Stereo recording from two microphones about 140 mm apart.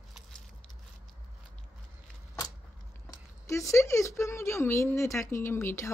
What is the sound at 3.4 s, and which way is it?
Speech, 20° left (ahead or behind).